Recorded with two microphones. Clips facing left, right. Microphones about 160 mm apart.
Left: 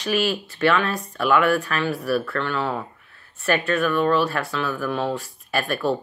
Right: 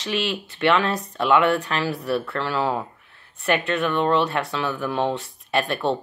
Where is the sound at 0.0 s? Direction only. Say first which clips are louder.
Left 3 dB; 25° right (ahead or behind).